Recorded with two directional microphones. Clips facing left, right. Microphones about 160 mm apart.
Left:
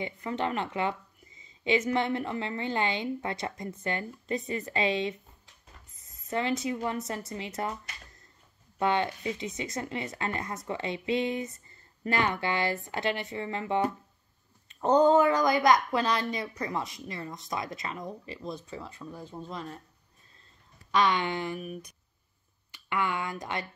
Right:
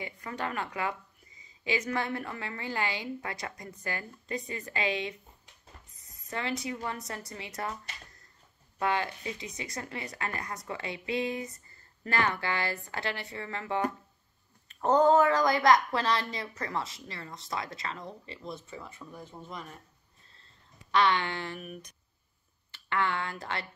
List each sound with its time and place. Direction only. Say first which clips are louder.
0.0 s a woman's voice: left 5 dB; 25° left (ahead or behind)
6.3 s a woman's voice: left 5 dB; 20° left (ahead or behind)
8.7 s a woman's voice: left 3 dB; 25° left (ahead or behind)
20.9 s speech: left 1 dB; 15° left (ahead or behind)
22.7 s speech: even; 15° left (ahead or behind)